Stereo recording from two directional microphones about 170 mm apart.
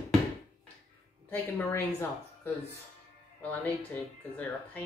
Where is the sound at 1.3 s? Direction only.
10° left (ahead or behind).